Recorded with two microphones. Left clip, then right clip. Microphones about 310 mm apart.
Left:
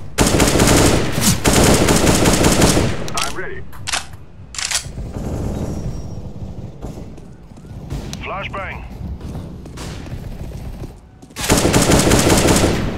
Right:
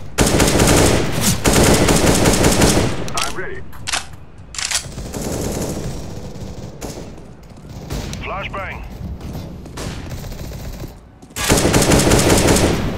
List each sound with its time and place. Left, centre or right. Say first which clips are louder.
0.1 s machine gun: even; centre
4.6 s single-lens reflex camera: even; centre
5.1 s machine gun: right 4 dB; right
8.1 s artillery fire: left 1 dB; centre
11.3 s machine gun: even; centre